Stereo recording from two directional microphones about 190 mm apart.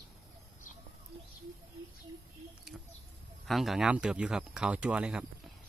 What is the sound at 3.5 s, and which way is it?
Speech, centre (ahead or behind).